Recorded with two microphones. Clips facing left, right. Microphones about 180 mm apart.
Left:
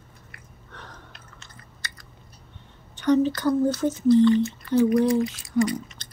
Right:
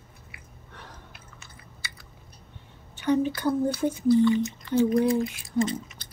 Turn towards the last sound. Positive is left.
turn(degrees=-25)  # may be behind; listen again after turning